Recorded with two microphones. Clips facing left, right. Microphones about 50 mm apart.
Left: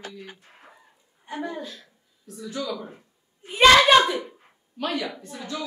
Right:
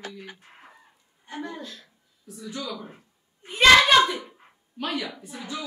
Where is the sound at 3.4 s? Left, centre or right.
Centre.